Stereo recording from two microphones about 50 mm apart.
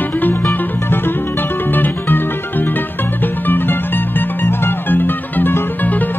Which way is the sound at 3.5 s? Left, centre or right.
Left.